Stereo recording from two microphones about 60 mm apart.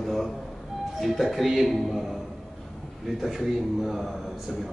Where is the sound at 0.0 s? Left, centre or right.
Centre.